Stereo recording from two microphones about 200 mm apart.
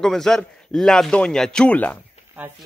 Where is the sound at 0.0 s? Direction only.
5° left (ahead or behind).